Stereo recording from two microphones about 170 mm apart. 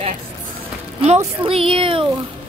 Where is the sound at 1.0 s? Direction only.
35° right (ahead or behind).